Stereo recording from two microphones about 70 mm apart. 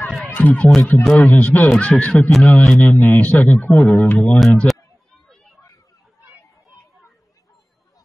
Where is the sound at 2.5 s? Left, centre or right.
Centre.